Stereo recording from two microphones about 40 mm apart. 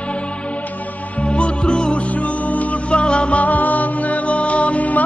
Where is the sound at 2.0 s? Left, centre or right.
Left.